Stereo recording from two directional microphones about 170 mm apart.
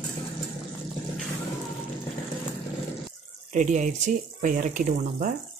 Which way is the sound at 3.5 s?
45° right (ahead or behind).